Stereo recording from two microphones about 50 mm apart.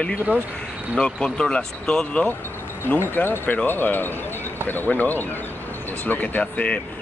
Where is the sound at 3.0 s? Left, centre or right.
Left.